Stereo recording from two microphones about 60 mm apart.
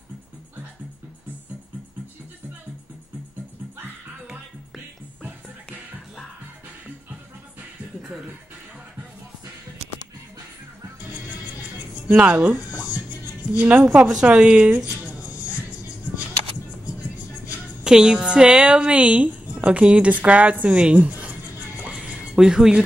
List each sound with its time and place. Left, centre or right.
12.1 s a woman's voice: right
17.8 s a woman's voice: centre
21.8 s music: centre